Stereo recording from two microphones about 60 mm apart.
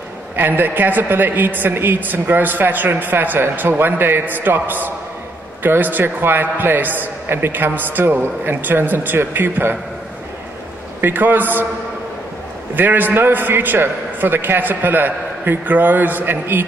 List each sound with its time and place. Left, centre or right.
0.4 s a woman's voice: right
11.0 s a woman's voice: right
12.7 s a woman's voice: right